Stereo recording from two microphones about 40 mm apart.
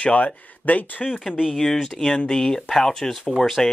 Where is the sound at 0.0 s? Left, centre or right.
Left.